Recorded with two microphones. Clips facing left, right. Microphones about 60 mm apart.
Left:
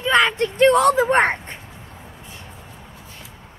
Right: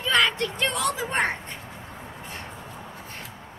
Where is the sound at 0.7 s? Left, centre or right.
Left.